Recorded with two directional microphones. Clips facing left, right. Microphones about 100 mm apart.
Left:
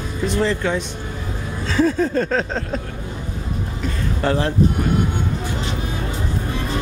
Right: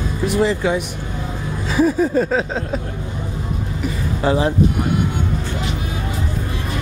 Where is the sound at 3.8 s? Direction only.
10° right (ahead or behind).